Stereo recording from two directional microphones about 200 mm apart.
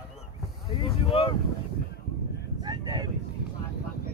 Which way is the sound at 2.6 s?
20° right (ahead or behind).